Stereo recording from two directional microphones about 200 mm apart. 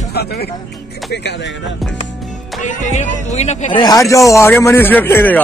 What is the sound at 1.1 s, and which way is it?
Speech, 60° left (ahead or behind).